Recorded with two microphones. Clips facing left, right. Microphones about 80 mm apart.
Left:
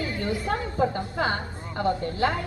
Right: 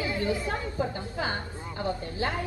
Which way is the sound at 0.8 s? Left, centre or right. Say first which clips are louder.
Left 8 dB; left.